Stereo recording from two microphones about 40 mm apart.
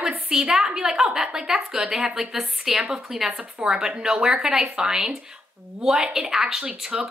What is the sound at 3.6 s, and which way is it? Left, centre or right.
A woman's voice, centre.